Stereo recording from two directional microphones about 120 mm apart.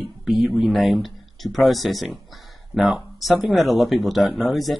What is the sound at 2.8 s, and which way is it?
Speech, 10° right (ahead or behind).